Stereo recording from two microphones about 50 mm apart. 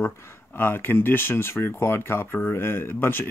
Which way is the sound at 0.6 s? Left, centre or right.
Left.